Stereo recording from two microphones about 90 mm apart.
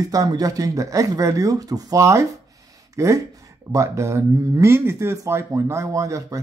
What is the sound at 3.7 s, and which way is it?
Speech, 35° right (ahead or behind).